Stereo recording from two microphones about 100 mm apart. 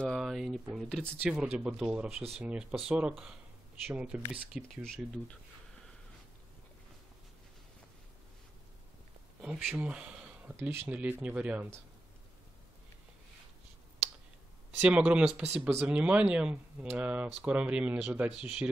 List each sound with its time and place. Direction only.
0.0 s a sound: centre (ahead or behind)
1.2 s speech: 10° right (ahead or behind)
4.6 s speech: 5° left (ahead or behind)
9.4 s a sound: 10° right (ahead or behind)
10.5 s speech: 25° right (ahead or behind)
14.8 s speech: 10° right (ahead or behind)